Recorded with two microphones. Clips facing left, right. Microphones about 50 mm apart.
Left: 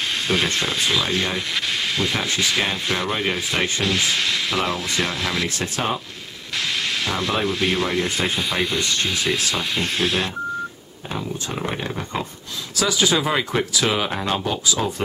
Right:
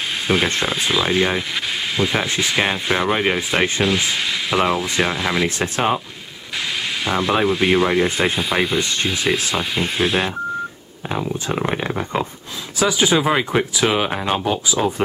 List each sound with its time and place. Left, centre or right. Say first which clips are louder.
0.3 s rub: right 4 dB; centre
2.6 s speech: right 4 dB; centre
3.8 s rub: right 2 dB; centre
7.1 s rub: right 7 dB; centre
11.1 s speech: right 5 dB; right